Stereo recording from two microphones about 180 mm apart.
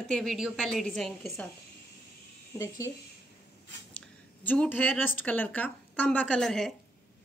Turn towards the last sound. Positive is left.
turn(degrees=0)  # may be behind; listen again after turning